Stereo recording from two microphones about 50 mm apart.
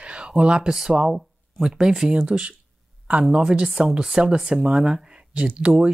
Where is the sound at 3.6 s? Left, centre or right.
Centre; by 5.8 s right.